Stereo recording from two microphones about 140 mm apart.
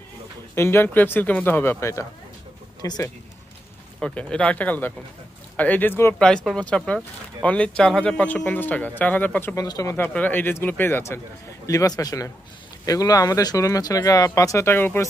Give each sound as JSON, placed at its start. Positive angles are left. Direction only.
{"t": 0.6, "sound": "a man's voice", "side_deg": 15}
{"t": 4.0, "sound": "a man's voice", "side_deg": 10}
{"t": 6.1, "sound": "a man's voice", "side_deg": 5}
{"t": 9.6, "sound": "speech", "side_deg": 25}
{"t": 10.0, "sound": "a man's voice", "side_deg": 10}